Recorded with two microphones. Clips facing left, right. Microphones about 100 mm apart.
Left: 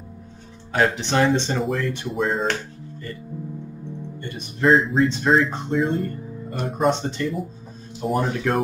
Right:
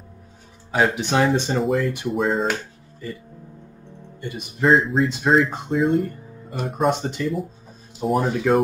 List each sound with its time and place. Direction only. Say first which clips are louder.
0.7 s speech: right 1 dB; 5° right (ahead or behind)
4.2 s speech: right 4 dB; 10° right (ahead or behind)
4.6 s speech: even; centre (ahead or behind)